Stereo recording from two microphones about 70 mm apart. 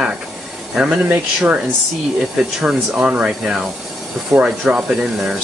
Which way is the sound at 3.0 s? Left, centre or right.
Centre.